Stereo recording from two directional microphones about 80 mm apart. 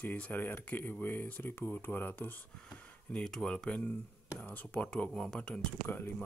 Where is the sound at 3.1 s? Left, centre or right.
Centre.